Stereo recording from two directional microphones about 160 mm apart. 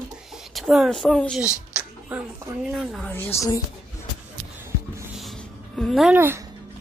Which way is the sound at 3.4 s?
20° left (ahead or behind).